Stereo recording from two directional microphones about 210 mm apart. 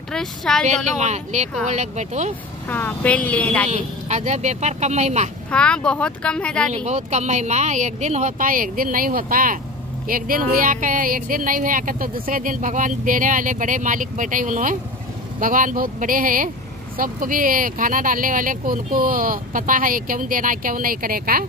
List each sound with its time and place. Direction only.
0.1 s speech: 5° left (ahead or behind)
0.9 s speech: 35° right (ahead or behind)
2.7 s speech: 10° left (ahead or behind)
3.6 s speech: 35° right (ahead or behind)
5.5 s speech: 5° left (ahead or behind)
6.7 s speech: 35° right (ahead or behind)